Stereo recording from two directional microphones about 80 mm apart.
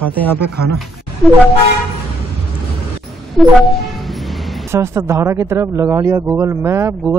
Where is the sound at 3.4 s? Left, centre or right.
Centre.